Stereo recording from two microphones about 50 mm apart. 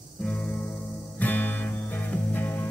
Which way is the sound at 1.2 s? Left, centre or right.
Left.